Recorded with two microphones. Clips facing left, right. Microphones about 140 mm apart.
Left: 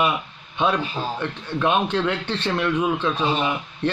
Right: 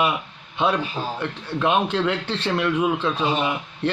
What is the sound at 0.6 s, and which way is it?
A man's voice, 5° right (ahead or behind).